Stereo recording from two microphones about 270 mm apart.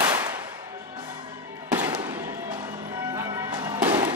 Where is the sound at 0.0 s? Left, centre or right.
Centre.